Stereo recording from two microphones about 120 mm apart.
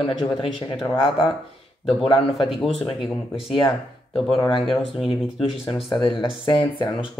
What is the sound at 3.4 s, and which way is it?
Speech, 40° left (ahead or behind).